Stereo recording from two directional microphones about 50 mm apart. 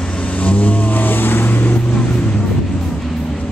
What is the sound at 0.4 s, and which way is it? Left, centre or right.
Vehicle, left.